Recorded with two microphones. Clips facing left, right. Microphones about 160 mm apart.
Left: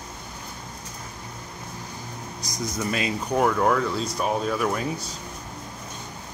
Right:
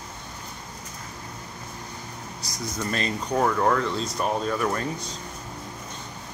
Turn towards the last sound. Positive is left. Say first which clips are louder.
# left 1 dB
turn(degrees=5)  # may be behind; listen again after turning